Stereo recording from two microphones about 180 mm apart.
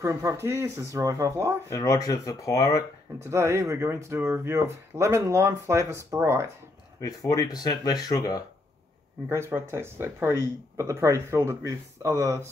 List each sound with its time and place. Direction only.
0.0 s speech: 15° right (ahead or behind)
1.7 s speech: 20° left (ahead or behind)
3.3 s speech: 15° right (ahead or behind)
7.0 s speech: 20° left (ahead or behind)
9.3 s speech: 15° right (ahead or behind)